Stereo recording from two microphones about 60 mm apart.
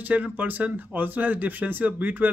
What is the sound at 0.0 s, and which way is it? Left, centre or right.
Speech, right.